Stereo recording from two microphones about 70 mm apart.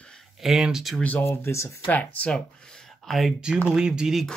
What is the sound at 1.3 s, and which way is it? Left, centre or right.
Speech, left.